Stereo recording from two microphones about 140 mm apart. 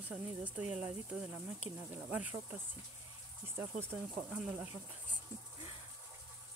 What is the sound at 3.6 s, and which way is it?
Speech, 20° right (ahead or behind).